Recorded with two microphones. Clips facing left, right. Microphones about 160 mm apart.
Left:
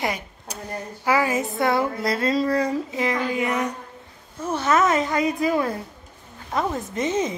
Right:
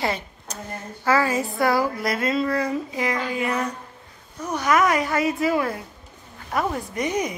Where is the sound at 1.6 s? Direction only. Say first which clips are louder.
Right 1 dB; 25° left (ahead or behind).